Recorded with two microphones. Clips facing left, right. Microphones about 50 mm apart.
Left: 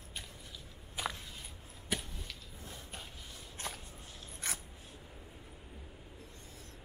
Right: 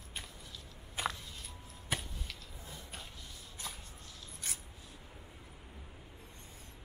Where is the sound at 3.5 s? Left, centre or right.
Left.